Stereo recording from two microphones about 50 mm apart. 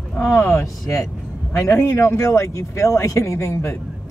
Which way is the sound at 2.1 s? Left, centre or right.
Left.